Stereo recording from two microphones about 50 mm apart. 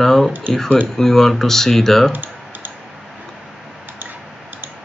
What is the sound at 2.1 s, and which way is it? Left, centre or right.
Typing, right.